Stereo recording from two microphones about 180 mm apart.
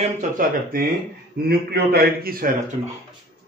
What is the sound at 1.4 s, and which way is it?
A man's voice, 60° right (ahead or behind).